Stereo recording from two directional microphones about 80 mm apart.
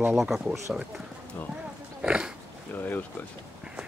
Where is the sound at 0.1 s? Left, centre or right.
Centre.